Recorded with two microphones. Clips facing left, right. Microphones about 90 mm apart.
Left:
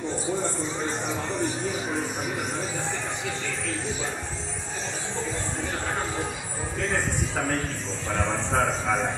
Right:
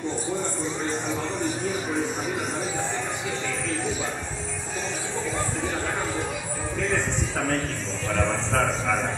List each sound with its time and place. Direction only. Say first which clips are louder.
8.1 s a man's voice: right 1 dB; 15° left (ahead or behind)